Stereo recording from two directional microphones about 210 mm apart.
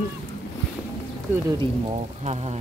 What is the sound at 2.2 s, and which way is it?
Speech, 30° right (ahead or behind).